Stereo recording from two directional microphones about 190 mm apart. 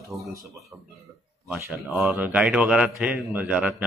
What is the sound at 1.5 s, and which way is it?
A man's voice, 5° right (ahead or behind).